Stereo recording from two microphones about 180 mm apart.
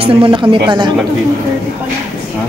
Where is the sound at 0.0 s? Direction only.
30° right (ahead or behind).